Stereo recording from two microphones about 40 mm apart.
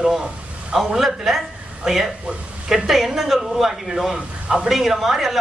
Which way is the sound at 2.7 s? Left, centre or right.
Centre.